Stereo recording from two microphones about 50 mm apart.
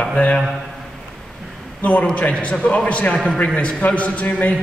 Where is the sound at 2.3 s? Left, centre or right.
Left.